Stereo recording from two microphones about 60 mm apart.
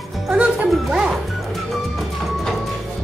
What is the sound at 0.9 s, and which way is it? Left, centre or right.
Music, centre.